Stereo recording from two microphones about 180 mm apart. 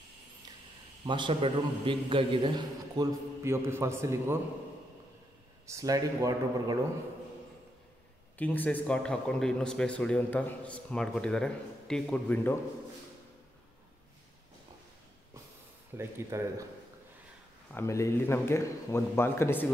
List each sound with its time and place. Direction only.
1.0 s a man's voice: 25° right (ahead or behind)
5.7 s a man's voice: 20° right (ahead or behind)
8.4 s speech: 10° left (ahead or behind)
16.0 s speech: 15° right (ahead or behind)
17.7 s speech: 15° left (ahead or behind)